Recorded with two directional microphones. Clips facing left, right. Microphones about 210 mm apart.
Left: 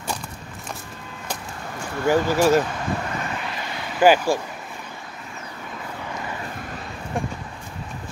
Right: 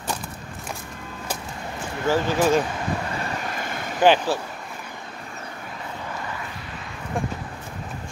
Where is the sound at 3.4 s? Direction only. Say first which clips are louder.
Right 1 dB; 50° right (ahead or behind).